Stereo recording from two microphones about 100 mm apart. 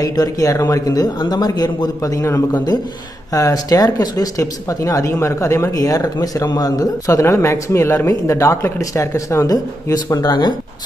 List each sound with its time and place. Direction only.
0.0 s speech: 40° left (ahead or behind)